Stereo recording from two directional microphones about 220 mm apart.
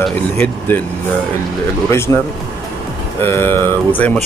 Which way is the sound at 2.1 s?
15° left (ahead or behind).